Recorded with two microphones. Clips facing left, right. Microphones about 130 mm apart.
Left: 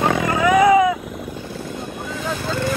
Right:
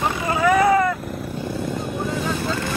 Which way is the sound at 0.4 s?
Centre (ahead or behind).